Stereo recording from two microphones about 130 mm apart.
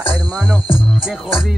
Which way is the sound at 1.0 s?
5° right (ahead or behind).